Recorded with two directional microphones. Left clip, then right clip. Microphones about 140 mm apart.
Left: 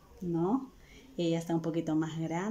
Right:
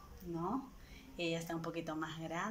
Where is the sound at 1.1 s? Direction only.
35° left (ahead or behind).